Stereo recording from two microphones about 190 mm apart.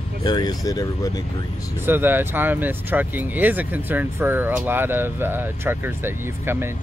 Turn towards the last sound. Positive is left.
turn(degrees=-10)  # may be behind; listen again after turning